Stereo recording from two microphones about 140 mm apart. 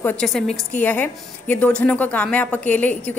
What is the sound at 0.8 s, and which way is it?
A woman's voice, 10° left (ahead or behind).